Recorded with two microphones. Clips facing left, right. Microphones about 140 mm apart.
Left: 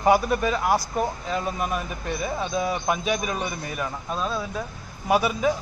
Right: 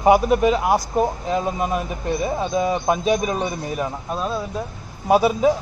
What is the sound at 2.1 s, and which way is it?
Speech, 15° right (ahead or behind).